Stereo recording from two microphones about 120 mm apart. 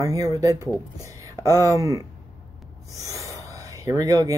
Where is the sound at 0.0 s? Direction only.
30° right (ahead or behind).